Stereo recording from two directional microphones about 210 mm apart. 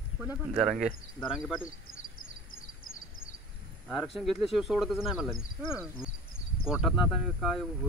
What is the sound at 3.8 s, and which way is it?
Speech, centre (ahead or behind).